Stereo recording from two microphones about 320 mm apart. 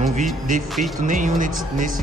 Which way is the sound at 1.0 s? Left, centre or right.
Right.